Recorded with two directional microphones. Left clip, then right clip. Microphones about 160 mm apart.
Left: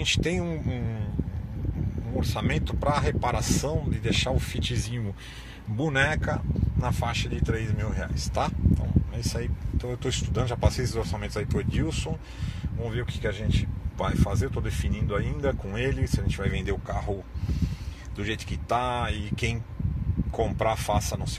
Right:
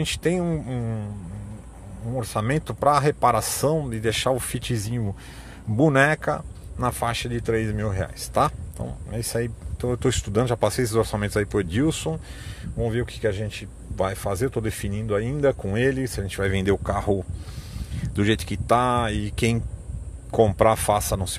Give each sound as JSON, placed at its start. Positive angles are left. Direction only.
{"t": 0.0, "sound": "speech", "side_deg": -45}
{"t": 2.1, "sound": "speech", "side_deg": -55}